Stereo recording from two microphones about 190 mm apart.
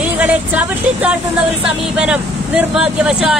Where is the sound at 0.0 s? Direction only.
5° right (ahead or behind).